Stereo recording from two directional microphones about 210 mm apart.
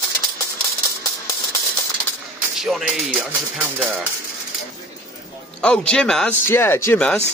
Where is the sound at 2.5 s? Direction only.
Centre (ahead or behind).